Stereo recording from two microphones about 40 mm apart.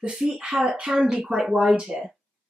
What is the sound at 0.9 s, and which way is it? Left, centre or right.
Speech, centre.